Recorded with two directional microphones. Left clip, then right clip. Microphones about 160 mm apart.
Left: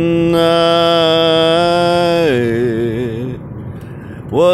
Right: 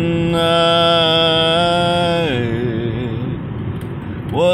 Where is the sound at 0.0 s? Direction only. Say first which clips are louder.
Left 5 dB; 30° left (ahead or behind).